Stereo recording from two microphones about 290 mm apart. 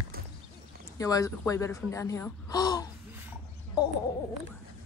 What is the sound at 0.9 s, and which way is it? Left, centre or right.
Speech, centre.